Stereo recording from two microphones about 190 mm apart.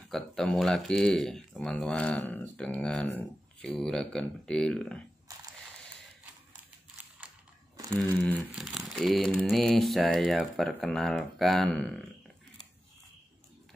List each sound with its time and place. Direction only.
0.1 s speech: 5° left (ahead or behind)
5.3 s a sound: 20° right (ahead or behind)
7.9 s speech: 5° left (ahead or behind)